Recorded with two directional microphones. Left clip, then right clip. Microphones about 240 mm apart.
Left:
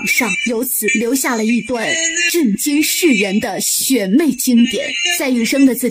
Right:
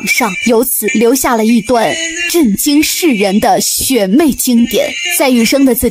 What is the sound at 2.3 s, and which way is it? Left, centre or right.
Speech, right.